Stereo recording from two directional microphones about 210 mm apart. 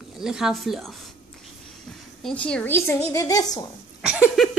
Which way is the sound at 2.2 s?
5° left (ahead or behind).